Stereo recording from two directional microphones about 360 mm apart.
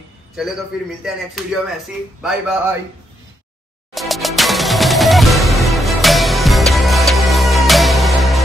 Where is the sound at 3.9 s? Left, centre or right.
Centre.